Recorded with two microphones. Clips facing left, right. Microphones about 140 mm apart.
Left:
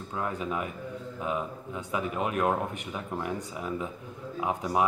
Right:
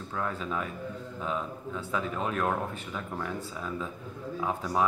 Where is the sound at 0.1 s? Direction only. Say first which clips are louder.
Left 1 dB; 15° left (ahead or behind).